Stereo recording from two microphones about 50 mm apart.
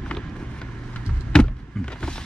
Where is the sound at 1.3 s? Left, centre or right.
Centre.